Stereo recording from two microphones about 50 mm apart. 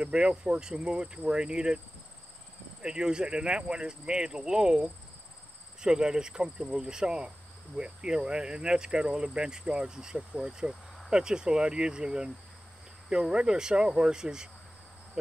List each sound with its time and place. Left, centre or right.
0.0 s speech: right
2.8 s speech: centre